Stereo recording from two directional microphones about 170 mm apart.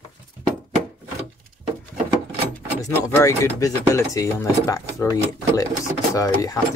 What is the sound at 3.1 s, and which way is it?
Speech, 15° left (ahead or behind).